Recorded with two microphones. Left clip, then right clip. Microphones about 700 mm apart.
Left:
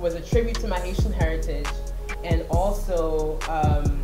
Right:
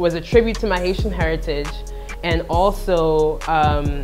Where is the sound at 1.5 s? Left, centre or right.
Right.